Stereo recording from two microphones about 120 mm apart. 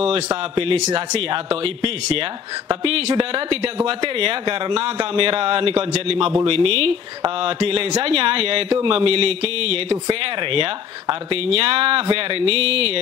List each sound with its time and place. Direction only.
0.3 s speech: 45° right (ahead or behind)